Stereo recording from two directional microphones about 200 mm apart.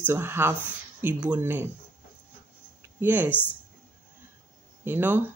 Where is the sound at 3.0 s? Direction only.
10° right (ahead or behind).